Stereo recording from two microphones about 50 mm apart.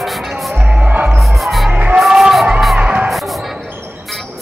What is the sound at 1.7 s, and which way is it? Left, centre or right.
Music, right.